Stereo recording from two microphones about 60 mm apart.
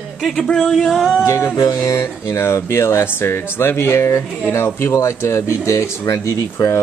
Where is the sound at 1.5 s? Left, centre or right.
Left.